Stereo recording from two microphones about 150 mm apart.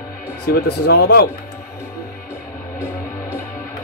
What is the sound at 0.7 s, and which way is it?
Speech, 90° left.